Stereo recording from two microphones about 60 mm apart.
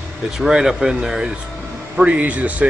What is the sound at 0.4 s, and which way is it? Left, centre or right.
Speech, centre.